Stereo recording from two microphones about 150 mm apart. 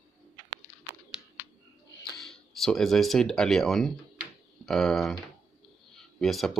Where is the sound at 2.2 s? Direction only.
Centre (ahead or behind).